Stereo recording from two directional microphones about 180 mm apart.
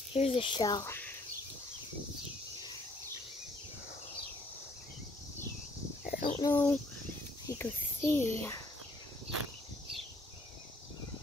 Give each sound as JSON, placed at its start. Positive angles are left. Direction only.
{"t": 0.1, "sound": "speech", "side_deg": 30}
{"t": 6.0, "sound": "a sound", "side_deg": 55}
{"t": 6.4, "sound": "a child's voice", "side_deg": 10}